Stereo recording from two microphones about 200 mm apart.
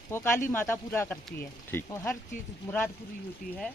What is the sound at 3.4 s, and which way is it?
Speech, 40° left (ahead or behind).